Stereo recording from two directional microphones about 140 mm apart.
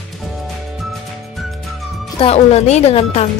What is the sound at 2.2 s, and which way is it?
Speech, 45° left (ahead or behind).